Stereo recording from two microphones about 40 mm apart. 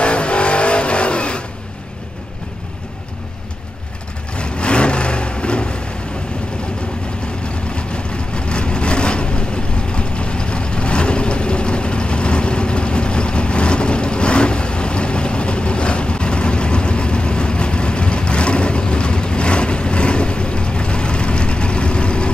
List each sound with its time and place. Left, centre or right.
0.0 s vehicle: left
4.4 s vehicle: left
7.7 s vehicle: left